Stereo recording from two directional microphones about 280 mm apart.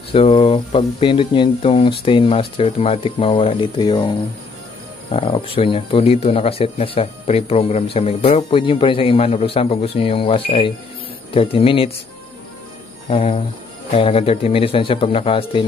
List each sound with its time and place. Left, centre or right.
0.1 s speech: centre
5.1 s speech: centre
13.1 s speech: left